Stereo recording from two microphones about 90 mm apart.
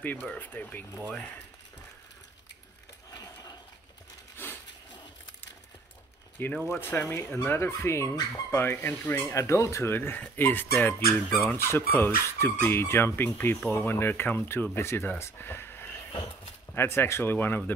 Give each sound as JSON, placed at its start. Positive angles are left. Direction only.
{"t": 0.0, "sound": "speech", "side_deg": 20}
{"t": 3.1, "sound": "a sound", "side_deg": 45}
{"t": 6.4, "sound": "speech", "side_deg": 25}
{"t": 11.2, "sound": "speech", "side_deg": 5}
{"t": 11.5, "sound": "speech", "side_deg": 30}